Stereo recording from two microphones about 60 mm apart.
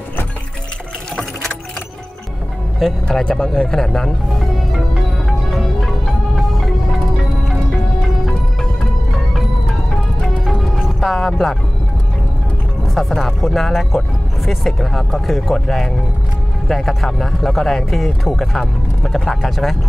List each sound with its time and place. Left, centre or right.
2.8 s speech: centre
5.5 s music: centre
10.2 s music: centre
12.8 s speech: centre